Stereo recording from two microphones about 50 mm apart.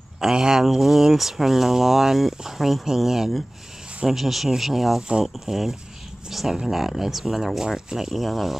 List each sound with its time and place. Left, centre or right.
0.2 s speech: centre